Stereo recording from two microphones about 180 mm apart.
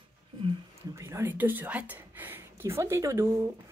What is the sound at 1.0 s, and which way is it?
Speech, 15° right (ahead or behind).